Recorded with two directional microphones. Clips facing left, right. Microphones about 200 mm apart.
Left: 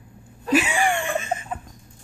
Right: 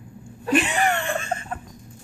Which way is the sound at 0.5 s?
10° left (ahead or behind).